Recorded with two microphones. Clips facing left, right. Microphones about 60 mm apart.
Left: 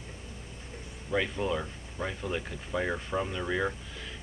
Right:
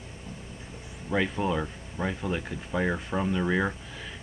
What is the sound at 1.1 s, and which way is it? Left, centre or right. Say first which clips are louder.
Speech: right 3 dB; centre.